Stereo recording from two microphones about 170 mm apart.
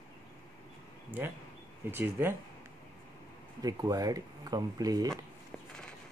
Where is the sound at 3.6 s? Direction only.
20° right (ahead or behind).